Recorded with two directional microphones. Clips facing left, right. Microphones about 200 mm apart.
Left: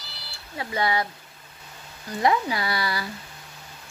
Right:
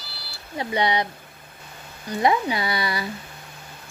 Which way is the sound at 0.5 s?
20° right (ahead or behind).